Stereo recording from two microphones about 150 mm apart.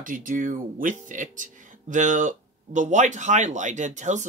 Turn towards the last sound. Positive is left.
turn(degrees=-55)  # may be behind; listen again after turning